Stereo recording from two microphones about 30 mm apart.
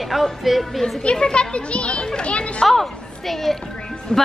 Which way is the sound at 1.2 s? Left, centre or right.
Left.